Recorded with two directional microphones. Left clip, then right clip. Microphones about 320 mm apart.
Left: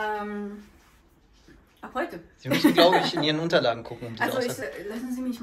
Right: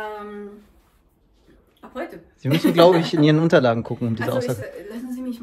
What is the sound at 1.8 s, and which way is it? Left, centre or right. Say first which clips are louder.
Speech: left 2 dB; centre.